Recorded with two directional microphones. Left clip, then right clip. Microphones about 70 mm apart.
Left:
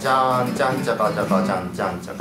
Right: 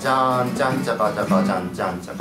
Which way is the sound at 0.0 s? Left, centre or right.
Centre.